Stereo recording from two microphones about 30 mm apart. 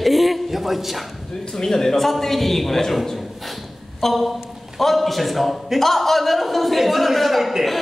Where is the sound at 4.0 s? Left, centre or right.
Centre.